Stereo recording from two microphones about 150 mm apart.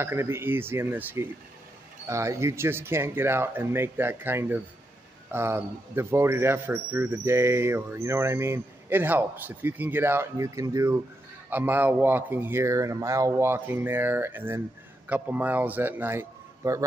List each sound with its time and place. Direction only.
0.0 s a man's voice: 15° right (ahead or behind)